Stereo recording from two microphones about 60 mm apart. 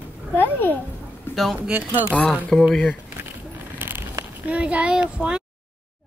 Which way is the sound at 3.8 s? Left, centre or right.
Right.